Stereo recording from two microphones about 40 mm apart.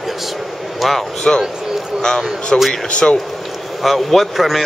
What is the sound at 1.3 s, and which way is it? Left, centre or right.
Speech, centre.